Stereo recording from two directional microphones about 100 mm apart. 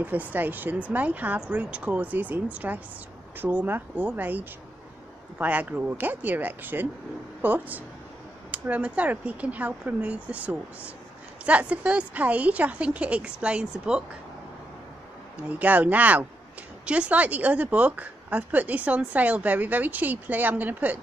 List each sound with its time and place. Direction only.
0.0 s a woman's voice: 15° right (ahead or behind)
5.4 s a woman's voice: 15° right (ahead or behind)
15.4 s a woman's voice: 15° right (ahead or behind)